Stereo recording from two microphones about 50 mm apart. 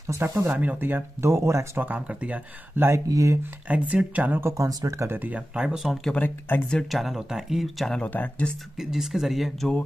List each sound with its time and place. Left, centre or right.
0.0 s speech: right
0.5 s speech: right
0.7 s speech: right
1.8 s speech: right
2.8 s speech: right
3.6 s speech: right
4.3 s speech: right
4.6 s speech: right
5.3 s speech: right
6.1 s speech: left
6.9 s speech: centre
8.1 s speech: left
8.7 s speech: centre